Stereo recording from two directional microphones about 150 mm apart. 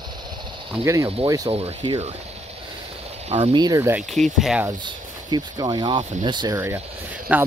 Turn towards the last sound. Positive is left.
turn(degrees=-10)  # may be behind; listen again after turning